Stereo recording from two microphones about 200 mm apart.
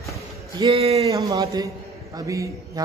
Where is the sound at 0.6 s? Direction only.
25° right (ahead or behind).